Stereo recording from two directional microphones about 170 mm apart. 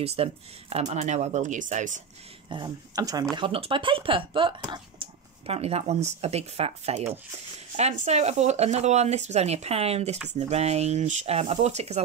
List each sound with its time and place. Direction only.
0.0 s speech: 35° right (ahead or behind)
2.5 s speech: 25° right (ahead or behind)
3.3 s speech: 30° right (ahead or behind)